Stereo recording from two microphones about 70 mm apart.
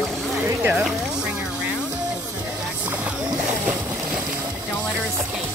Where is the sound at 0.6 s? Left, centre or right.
Right.